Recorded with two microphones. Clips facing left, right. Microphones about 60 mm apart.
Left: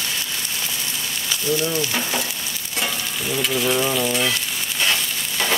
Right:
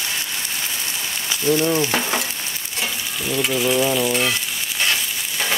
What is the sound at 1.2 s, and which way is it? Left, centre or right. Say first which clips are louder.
Frying: right 4 dB; right.